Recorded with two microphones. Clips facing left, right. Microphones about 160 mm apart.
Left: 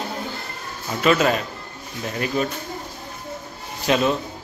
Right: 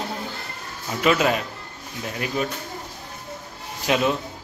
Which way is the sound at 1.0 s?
10° right (ahead or behind).